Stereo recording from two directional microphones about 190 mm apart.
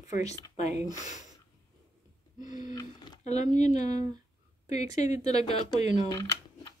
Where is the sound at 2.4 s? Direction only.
40° left (ahead or behind).